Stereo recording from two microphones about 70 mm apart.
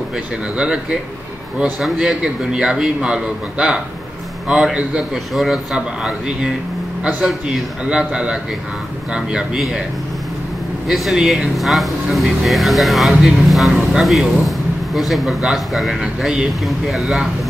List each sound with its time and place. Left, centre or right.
0.6 s a man's voice: centre
10.9 s speech: centre
11.5 s speech: centre
13.7 s speech: centre
14.0 s speech: centre